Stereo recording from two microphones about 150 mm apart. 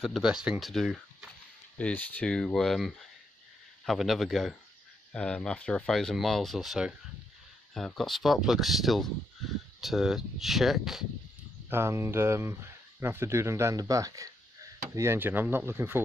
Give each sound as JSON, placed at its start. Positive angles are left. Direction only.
{"t": 0.0, "sound": "speech", "side_deg": -5}
{"t": 1.8, "sound": "speech", "side_deg": 10}
{"t": 11.7, "sound": "speech", "side_deg": -15}